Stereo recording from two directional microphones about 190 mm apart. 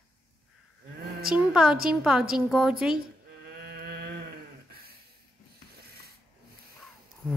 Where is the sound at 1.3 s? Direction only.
5° right (ahead or behind).